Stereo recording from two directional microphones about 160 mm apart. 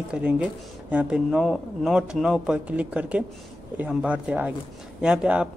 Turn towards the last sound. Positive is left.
turn(degrees=-5)  # may be behind; listen again after turning